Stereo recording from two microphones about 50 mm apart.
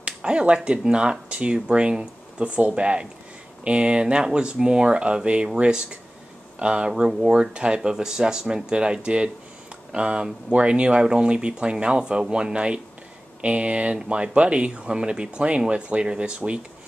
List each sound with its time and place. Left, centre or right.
0.0 s a sound: right
0.7 s speech: centre
6.9 s speech: centre